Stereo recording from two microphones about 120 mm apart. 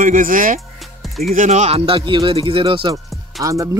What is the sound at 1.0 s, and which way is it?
Music, centre (ahead or behind).